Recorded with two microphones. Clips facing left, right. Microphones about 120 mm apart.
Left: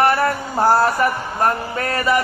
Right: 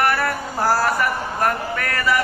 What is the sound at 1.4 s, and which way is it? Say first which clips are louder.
Speech: left 3 dB; 25° left (ahead or behind).